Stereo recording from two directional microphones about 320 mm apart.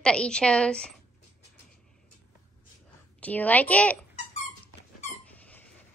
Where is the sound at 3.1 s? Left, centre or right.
Centre.